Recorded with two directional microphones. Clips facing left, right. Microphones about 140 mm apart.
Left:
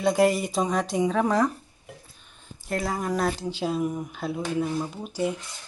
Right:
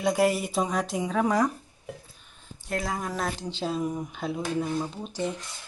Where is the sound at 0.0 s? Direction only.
5° right (ahead or behind).